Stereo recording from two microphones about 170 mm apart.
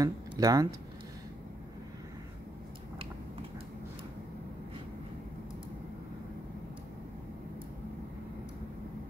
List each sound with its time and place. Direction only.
0.0 s speech: 20° right (ahead or behind)